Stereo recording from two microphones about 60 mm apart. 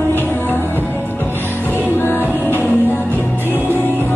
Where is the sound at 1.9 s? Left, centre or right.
Left.